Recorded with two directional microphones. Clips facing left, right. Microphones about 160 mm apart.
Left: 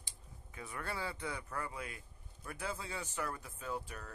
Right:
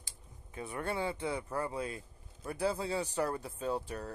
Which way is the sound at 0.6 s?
25° right (ahead or behind).